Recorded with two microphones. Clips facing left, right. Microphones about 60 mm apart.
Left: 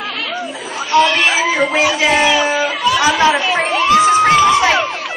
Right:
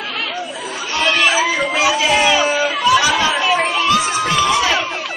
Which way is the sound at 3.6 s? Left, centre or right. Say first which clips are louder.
Left 5 dB; left.